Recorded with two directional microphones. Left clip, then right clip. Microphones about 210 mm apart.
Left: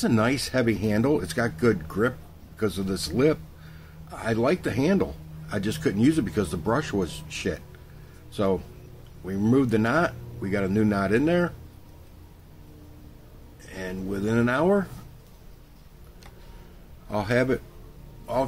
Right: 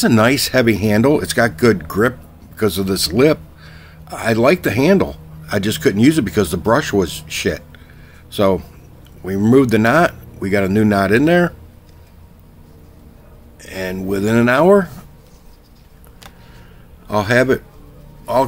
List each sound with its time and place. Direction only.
0.0 s speech: 50° right (ahead or behind)
13.6 s speech: 45° right (ahead or behind)
17.1 s speech: 45° right (ahead or behind)